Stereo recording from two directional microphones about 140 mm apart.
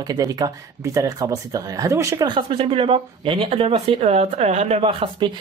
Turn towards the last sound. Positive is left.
turn(degrees=-40)  # may be behind; listen again after turning